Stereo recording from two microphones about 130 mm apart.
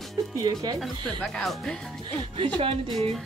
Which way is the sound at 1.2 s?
Centre (ahead or behind).